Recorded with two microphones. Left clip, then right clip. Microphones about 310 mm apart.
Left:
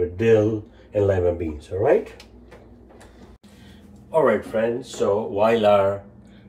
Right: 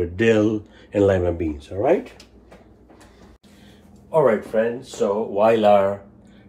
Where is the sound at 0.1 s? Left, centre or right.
Right.